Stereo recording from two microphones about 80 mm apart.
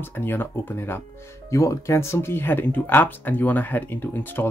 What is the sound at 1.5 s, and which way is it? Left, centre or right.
Speech, left.